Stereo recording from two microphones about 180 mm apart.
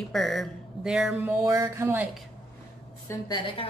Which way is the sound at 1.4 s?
20° right (ahead or behind).